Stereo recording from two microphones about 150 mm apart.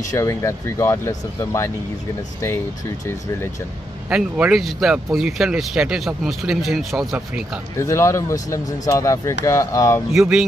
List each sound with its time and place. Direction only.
0.1 s speech: 20° left (ahead or behind)
4.1 s speech: 5° right (ahead or behind)
7.7 s speech: 20° left (ahead or behind)
10.1 s speech: 5° right (ahead or behind)